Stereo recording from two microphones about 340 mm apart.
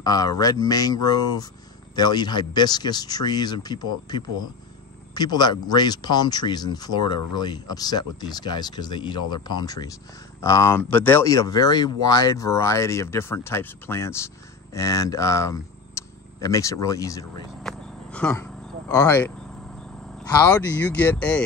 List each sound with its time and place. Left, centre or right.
0.0 s speech: centre